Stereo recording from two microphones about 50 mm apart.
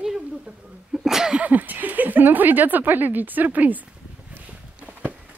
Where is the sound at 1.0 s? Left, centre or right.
Centre.